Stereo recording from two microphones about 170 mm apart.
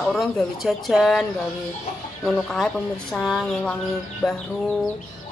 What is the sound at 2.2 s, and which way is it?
A woman's voice, 5° left (ahead or behind).